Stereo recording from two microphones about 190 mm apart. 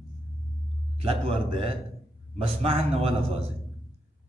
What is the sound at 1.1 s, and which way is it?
A man's voice, 30° right (ahead or behind).